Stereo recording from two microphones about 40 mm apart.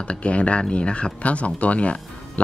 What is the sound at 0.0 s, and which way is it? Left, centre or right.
Speech, left.